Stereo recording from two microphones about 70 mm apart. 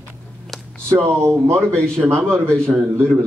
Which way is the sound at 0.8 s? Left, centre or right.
Right.